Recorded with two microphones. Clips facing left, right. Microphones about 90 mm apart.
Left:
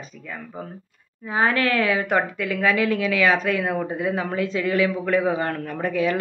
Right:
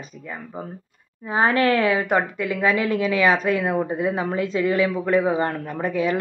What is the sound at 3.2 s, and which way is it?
Speech, 10° right (ahead or behind).